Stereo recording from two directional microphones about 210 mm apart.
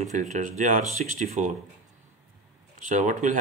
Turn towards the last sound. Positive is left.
turn(degrees=-35)  # may be behind; listen again after turning